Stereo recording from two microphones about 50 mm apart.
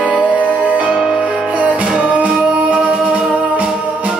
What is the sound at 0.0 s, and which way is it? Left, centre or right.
Music, centre.